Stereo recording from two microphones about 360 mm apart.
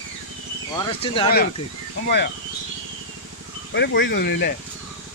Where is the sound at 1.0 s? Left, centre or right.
Centre.